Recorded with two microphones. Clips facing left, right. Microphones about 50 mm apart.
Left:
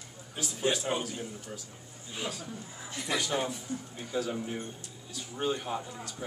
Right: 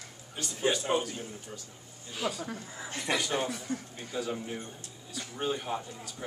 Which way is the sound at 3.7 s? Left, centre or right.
Right.